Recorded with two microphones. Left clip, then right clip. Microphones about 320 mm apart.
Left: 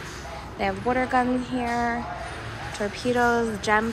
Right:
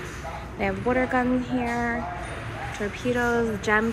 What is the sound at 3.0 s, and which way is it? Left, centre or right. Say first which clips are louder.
Speech: left 2 dB; centre.